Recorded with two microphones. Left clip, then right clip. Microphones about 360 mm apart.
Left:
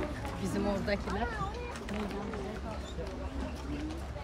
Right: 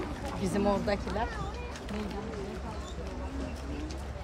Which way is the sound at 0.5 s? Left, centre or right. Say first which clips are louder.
Right 4 dB; centre.